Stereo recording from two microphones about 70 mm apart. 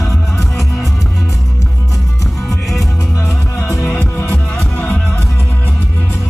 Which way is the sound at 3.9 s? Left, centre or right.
Left.